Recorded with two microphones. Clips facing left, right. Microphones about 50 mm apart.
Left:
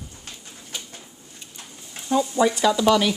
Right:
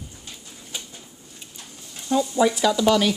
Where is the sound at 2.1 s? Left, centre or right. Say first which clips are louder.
Even; centre.